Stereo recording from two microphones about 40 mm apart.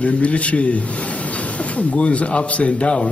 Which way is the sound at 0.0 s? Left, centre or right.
Left.